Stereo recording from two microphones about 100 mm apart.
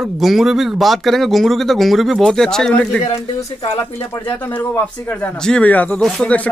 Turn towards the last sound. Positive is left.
turn(degrees=10)  # may be behind; listen again after turning